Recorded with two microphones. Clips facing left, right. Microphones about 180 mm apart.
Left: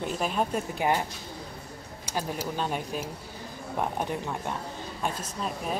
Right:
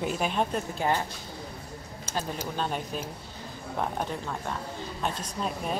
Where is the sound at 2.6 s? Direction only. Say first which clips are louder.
Right 1 dB; 10° left (ahead or behind).